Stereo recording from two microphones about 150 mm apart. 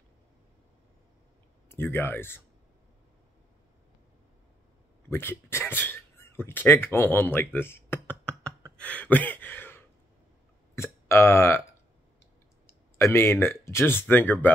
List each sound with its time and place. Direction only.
1.7 s speech: 15° left (ahead or behind)
5.1 s speech: 15° left (ahead or behind)
8.7 s a sound: 10° left (ahead or behind)
10.8 s speech: 15° left (ahead or behind)
12.6 s speech: 15° left (ahead or behind)